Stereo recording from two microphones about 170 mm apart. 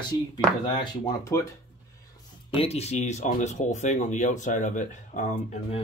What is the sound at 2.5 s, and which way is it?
Speech, 35° left (ahead or behind).